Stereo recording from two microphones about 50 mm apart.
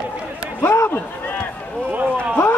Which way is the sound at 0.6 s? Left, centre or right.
Left.